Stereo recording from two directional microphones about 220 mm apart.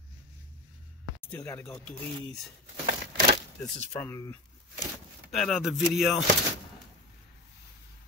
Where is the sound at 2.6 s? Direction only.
45° right (ahead or behind).